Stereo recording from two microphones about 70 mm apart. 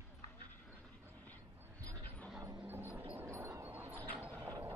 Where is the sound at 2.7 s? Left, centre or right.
Right.